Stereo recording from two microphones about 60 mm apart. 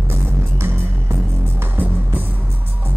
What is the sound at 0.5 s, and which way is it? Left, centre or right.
Music, right.